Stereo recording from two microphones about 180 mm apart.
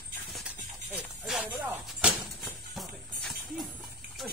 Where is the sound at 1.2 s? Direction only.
Centre (ahead or behind).